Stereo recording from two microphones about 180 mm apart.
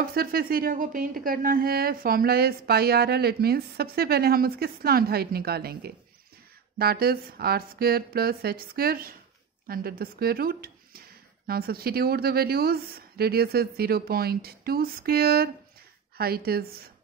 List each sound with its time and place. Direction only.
0.0 s speech: 55° right (ahead or behind)